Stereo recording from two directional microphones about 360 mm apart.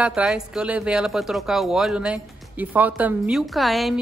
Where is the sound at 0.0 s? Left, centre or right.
Centre.